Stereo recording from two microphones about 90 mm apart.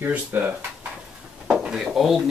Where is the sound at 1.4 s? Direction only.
5° right (ahead or behind).